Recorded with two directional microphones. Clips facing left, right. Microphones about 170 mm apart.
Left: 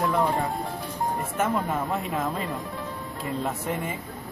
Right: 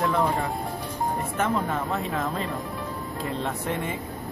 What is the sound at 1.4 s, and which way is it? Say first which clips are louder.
Speech: even; 10° left (ahead or behind).